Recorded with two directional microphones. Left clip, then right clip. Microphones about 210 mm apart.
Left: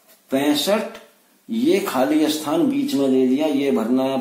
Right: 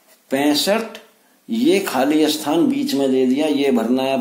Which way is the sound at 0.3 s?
45° right (ahead or behind).